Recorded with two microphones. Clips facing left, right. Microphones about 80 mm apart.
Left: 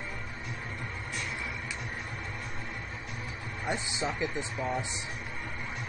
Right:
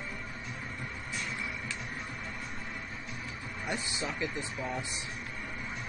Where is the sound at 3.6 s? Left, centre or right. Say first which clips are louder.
Left 3 dB; left.